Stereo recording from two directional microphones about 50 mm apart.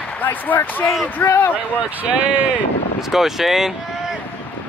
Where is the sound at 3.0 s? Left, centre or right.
Centre.